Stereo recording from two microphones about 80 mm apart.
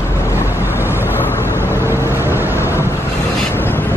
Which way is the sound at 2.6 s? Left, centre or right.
Left.